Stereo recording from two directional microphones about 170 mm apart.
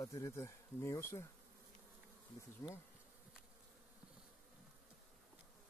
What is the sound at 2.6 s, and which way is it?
Bee, 20° left (ahead or behind).